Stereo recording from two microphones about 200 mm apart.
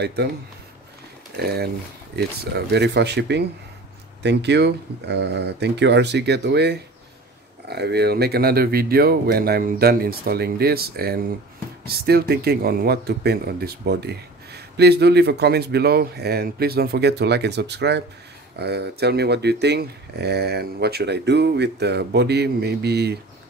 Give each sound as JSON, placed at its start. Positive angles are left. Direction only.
{"t": 0.0, "sound": "speech", "side_deg": -55}
{"t": 1.3, "sound": "speech", "side_deg": -50}